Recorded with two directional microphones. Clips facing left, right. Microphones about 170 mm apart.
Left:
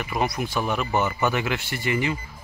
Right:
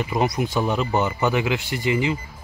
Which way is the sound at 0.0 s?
20° right (ahead or behind).